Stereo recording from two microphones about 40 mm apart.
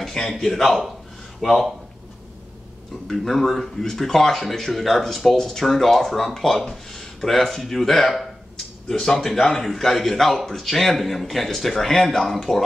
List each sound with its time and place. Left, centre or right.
0.3 s speech: centre
3.1 s speech: centre
8.8 s speech: centre